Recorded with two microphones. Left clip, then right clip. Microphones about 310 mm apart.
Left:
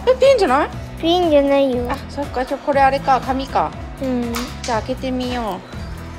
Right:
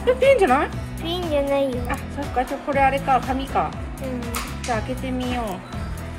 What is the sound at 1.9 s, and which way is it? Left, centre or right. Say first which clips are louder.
Speech: left 3 dB; centre.